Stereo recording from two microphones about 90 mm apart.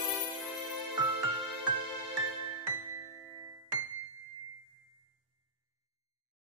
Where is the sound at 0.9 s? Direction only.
50° right (ahead or behind).